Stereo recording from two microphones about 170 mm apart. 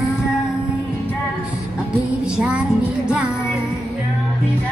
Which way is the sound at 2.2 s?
5° right (ahead or behind).